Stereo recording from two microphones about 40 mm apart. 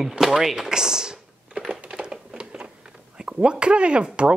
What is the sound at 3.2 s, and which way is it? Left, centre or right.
Speech, right.